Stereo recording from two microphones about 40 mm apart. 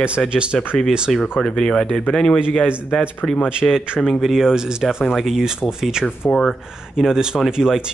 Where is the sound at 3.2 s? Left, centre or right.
Centre.